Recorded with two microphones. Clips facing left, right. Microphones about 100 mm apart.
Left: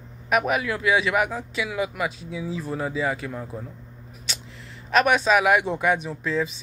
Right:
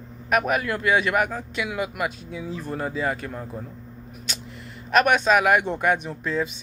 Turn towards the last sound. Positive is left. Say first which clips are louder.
# left 1 dB
turn(degrees=0)  # may be behind; listen again after turning